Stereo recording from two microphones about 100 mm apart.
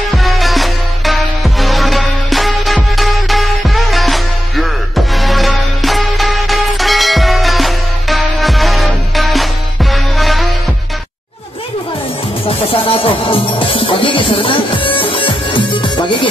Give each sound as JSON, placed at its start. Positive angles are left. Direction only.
{"t": 0.1, "sound": "music", "side_deg": 0}
{"t": 12.4, "sound": "music", "side_deg": 65}